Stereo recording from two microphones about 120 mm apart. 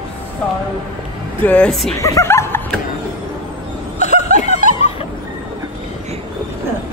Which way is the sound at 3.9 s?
75° left (ahead or behind).